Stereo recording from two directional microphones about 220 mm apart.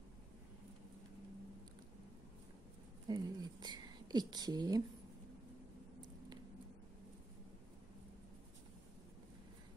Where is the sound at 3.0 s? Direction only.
20° right (ahead or behind).